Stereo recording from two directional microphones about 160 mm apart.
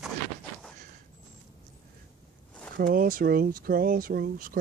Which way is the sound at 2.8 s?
65° right (ahead or behind).